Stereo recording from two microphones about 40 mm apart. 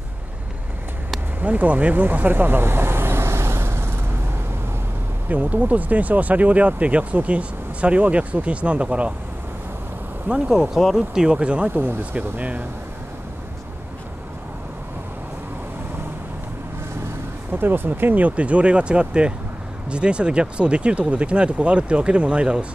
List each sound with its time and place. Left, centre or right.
1.4 s vehicle: right
5.3 s speech: right
10.2 s speech: centre
12.0 s speech: right
17.5 s speech: right